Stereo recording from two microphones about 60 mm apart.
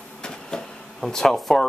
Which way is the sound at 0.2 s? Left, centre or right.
Centre.